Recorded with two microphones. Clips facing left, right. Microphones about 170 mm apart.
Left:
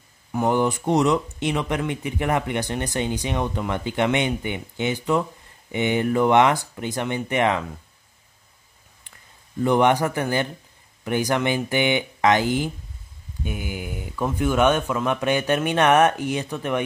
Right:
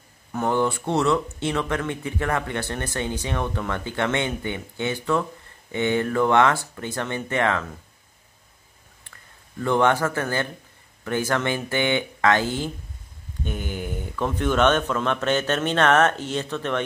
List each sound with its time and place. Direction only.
0.3 s speech: 15° left (ahead or behind)
9.6 s speech: 15° left (ahead or behind)